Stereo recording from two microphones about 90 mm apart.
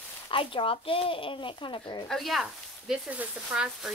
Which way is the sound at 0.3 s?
75° left (ahead or behind).